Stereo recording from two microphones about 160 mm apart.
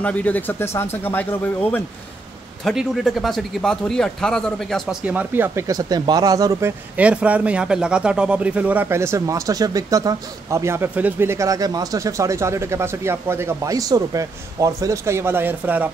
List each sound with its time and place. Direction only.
0.0 s speech: 10° left (ahead or behind)
2.6 s speech: 5° right (ahead or behind)
5.0 s speech: 10° right (ahead or behind)
7.0 s speech: 10° right (ahead or behind)